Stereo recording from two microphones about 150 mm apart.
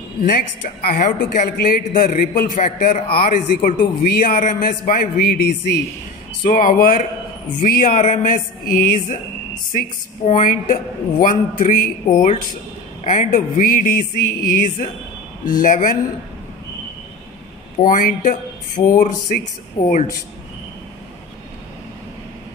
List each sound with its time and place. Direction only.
0.8 s a man's voice: 75° left (ahead or behind); by 5.8 s 90° left
6.5 s a man's voice: 65° left (ahead or behind)
17.7 s speech: 60° left (ahead or behind)